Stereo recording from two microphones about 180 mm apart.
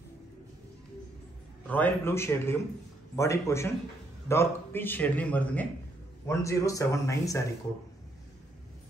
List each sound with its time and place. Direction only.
1.7 s a man's voice: 10° left (ahead or behind)